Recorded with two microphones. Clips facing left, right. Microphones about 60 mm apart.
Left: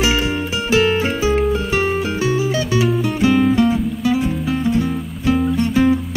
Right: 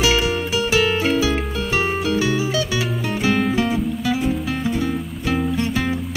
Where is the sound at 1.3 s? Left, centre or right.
Centre.